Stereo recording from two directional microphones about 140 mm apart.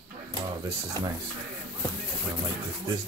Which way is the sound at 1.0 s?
20° left (ahead or behind).